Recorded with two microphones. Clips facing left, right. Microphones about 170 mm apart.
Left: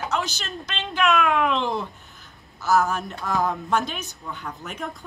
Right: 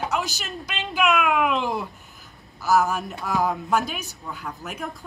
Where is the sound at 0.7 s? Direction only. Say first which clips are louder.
Even; centre (ahead or behind).